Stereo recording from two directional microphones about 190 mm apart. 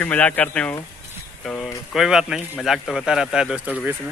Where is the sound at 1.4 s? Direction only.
5° left (ahead or behind).